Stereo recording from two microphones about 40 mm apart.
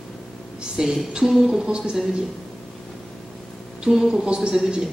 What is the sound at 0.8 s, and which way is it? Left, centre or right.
Speech, centre.